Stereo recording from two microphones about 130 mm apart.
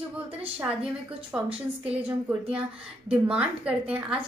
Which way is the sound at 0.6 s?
10° right (ahead or behind).